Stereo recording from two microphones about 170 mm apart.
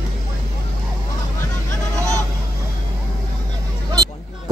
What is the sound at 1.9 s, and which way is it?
Hubbub, 20° right (ahead or behind).